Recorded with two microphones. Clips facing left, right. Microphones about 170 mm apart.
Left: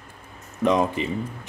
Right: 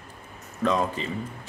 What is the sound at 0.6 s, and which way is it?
Speech, 20° left (ahead or behind).